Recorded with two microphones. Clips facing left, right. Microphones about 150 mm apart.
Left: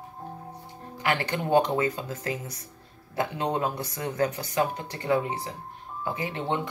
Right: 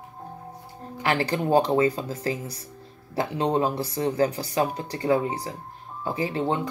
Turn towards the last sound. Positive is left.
turn(degrees=-35)  # may be behind; listen again after turning